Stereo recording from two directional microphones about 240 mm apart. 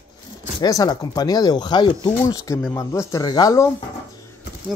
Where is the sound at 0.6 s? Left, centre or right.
Centre.